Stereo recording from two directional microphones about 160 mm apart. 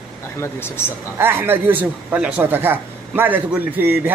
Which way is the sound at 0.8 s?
15° left (ahead or behind).